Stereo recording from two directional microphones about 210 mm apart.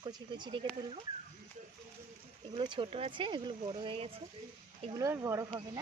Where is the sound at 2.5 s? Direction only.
25° right (ahead or behind).